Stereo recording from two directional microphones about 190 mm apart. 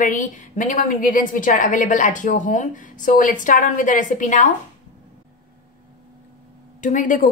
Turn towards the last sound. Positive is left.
turn(degrees=45)  # may be behind; listen again after turning